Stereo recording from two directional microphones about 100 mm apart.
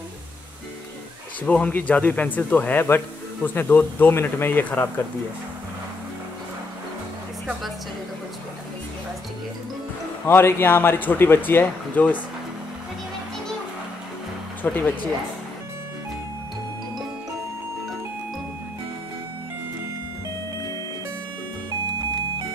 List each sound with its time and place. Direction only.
1.4 s speech: 15° left (ahead or behind)
10.2 s speech: 20° left (ahead or behind)
14.6 s speech: 20° left (ahead or behind)